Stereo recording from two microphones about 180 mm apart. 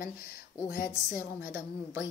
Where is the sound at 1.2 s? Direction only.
15° right (ahead or behind).